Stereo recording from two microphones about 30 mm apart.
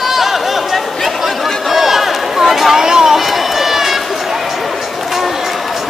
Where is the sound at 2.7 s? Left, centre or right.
Centre.